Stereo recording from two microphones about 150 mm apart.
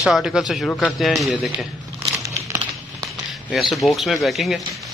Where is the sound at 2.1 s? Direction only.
20° right (ahead or behind).